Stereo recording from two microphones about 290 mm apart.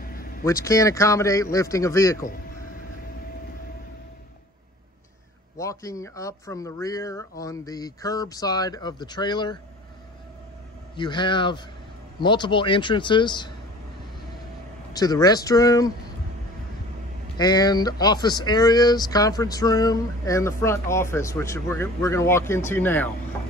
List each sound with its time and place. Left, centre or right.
0.0 s vehicle: left
0.5 s speech: centre
5.6 s speech: centre
11.0 s speech: centre
14.9 s speech: centre
17.4 s speech: centre